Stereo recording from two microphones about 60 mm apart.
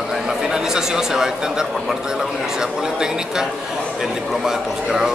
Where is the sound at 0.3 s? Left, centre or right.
Centre.